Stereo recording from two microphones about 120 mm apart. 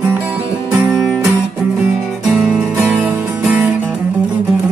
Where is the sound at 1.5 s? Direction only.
Centre (ahead or behind); by 3.4 s 15° right (ahead or behind).